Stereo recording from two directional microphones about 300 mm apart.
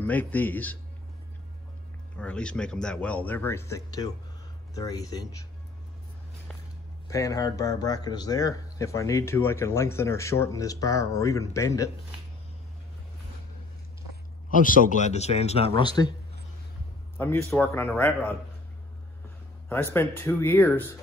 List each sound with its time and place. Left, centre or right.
0.0 s speech: centre
2.1 s speech: centre
7.1 s speech: centre
14.5 s a man's voice: left
17.5 s speech: centre
19.7 s speech: centre